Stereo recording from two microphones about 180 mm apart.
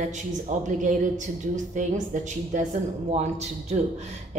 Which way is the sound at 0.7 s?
45° right (ahead or behind).